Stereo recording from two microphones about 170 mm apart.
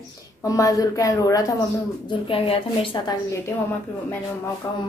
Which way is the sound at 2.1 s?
35° left (ahead or behind).